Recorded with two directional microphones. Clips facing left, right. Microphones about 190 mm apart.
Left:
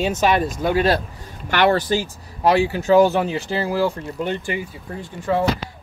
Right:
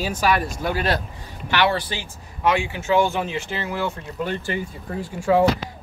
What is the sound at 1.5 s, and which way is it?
Speech, 45° left (ahead or behind).